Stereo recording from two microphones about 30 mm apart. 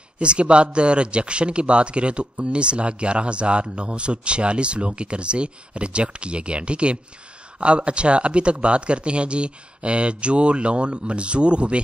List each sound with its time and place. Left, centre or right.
0.2 s speech: right